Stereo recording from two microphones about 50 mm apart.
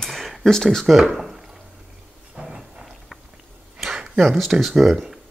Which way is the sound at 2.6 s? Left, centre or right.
Centre.